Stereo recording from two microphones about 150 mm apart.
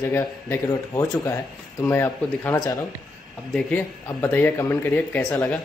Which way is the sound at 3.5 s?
10° left (ahead or behind).